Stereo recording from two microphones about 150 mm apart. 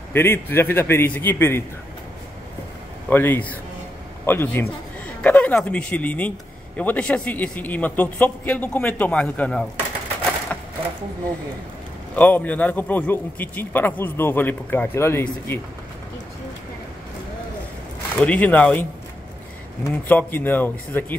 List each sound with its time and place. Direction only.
0.1 s a man's voice: 15° left (ahead or behind)
3.1 s a man's voice: 15° left (ahead or behind)
10.5 s a sound: 10° left (ahead or behind)
12.2 s a man's voice: 10° left (ahead or behind)
18.1 s a man's voice: 10° left (ahead or behind)